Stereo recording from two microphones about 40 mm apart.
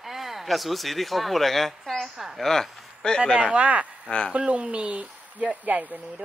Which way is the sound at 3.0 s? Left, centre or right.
Left.